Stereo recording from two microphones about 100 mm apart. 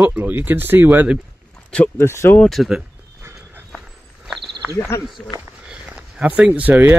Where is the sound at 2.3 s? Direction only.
Centre (ahead or behind).